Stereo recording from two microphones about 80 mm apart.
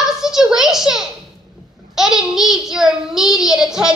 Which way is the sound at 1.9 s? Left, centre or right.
Centre.